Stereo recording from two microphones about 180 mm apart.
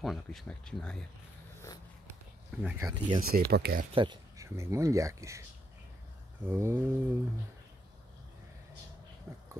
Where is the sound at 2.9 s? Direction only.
25° right (ahead or behind).